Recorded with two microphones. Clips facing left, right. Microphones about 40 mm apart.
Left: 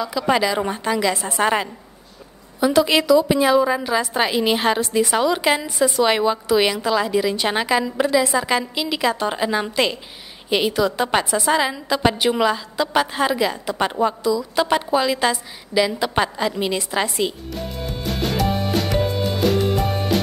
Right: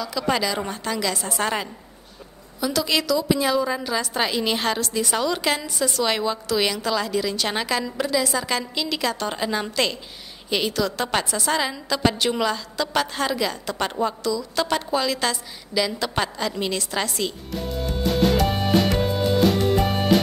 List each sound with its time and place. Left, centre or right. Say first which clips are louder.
0.3 s a woman's voice: left 5 dB; centre
17.5 s music: right 1 dB; centre